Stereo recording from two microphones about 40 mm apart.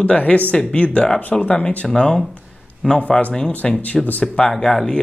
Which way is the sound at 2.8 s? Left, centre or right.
Centre.